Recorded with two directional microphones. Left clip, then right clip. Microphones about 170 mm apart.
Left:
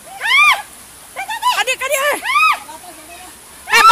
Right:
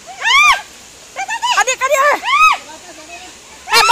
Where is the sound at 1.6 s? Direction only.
15° left (ahead or behind).